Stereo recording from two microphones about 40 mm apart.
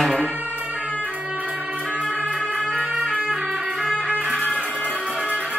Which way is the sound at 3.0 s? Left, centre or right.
Left.